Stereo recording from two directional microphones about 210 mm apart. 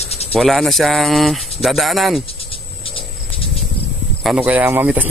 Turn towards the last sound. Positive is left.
turn(degrees=-10)  # may be behind; listen again after turning